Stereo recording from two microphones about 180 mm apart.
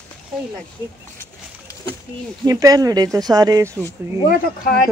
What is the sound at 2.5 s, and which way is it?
Speech, 20° right (ahead or behind).